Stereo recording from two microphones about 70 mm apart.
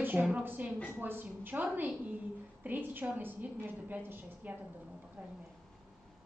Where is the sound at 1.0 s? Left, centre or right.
Right.